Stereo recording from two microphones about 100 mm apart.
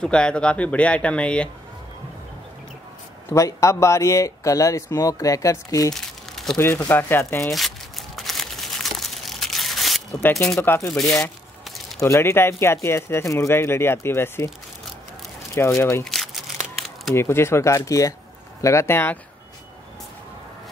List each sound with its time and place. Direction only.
0.0 s speech: 10° left (ahead or behind)
3.3 s speech: 30° left (ahead or behind)
5.9 s crumpling: 5° left (ahead or behind)
6.9 s speech: 20° left (ahead or behind)
8.2 s crumpling: centre (ahead or behind)
10.6 s speech: 25° left (ahead or behind)
10.9 s speech: 5° left (ahead or behind)
12.0 s speech: 30° left (ahead or behind)
15.6 s speech: 25° left (ahead or behind)
16.0 s crumpling: centre (ahead or behind)
17.1 s speech: 25° left (ahead or behind)